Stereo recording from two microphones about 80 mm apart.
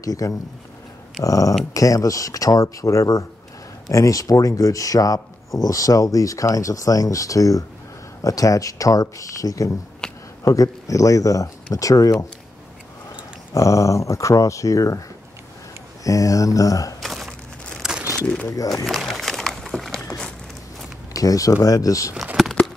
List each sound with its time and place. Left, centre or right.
0.0 s speech: left
10.0 s a sound: centre
10.4 s speech: left
13.5 s speech: left
17.0 s crumpling: centre
17.8 s a sound: centre
21.1 s speech: left